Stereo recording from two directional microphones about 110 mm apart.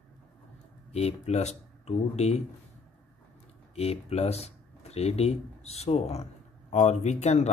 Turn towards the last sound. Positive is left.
turn(degrees=90)